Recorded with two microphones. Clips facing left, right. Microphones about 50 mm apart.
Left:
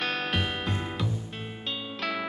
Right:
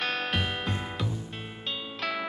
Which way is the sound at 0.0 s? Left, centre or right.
Centre.